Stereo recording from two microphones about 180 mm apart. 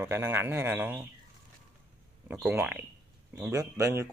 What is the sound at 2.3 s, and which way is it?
Speech, 5° right (ahead or behind).